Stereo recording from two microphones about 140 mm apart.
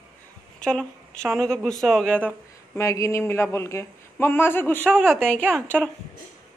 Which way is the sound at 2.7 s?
20° left (ahead or behind).